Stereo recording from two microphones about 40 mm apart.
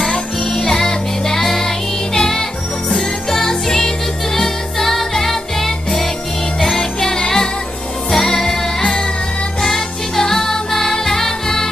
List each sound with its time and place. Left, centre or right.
0.1 s music: centre